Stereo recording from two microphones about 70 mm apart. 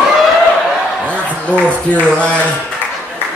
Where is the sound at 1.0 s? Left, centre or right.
Centre.